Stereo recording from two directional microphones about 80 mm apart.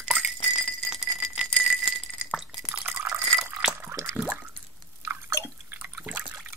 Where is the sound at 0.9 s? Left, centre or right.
Centre.